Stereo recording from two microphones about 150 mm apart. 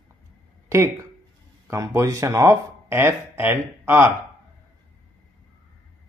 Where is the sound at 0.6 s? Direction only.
20° right (ahead or behind).